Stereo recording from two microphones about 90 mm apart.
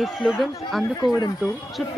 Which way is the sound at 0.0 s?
5° right (ahead or behind).